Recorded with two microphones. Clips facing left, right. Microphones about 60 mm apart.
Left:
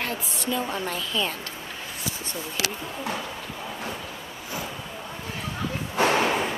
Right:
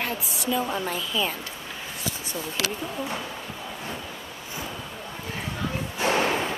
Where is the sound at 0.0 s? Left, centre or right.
Centre.